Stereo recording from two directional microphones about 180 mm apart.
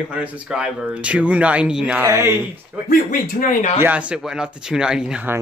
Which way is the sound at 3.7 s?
10° right (ahead or behind).